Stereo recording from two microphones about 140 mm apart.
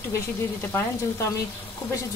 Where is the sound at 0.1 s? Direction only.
15° left (ahead or behind).